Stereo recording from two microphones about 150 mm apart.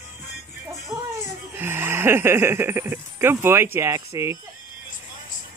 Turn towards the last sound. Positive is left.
turn(degrees=-20)  # may be behind; listen again after turning